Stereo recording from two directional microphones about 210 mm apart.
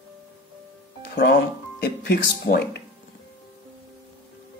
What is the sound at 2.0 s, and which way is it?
Speech, 50° left (ahead or behind).